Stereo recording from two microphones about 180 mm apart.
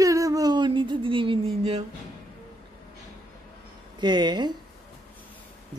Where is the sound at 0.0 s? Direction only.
20° right (ahead or behind).